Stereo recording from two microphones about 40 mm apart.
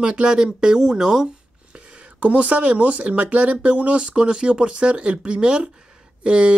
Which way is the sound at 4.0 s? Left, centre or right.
Centre.